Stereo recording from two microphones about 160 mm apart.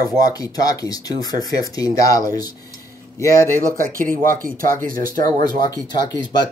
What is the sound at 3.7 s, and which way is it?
Speech, 60° right (ahead or behind).